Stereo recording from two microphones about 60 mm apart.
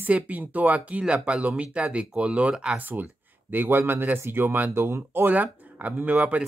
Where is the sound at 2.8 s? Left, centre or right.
Right.